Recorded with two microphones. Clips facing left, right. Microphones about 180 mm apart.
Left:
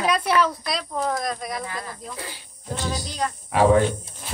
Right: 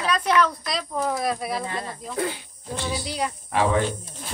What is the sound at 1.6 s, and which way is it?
Speech, 25° right (ahead or behind).